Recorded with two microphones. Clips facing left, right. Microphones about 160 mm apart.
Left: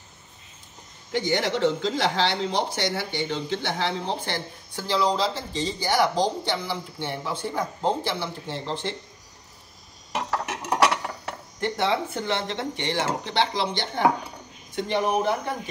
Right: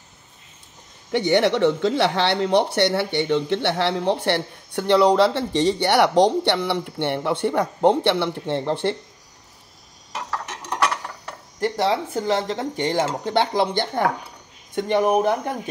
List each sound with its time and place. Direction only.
1.1 s speech: 65° right (ahead or behind)
11.6 s speech: 35° right (ahead or behind)